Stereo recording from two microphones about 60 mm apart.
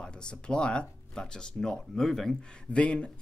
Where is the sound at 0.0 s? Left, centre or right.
Centre.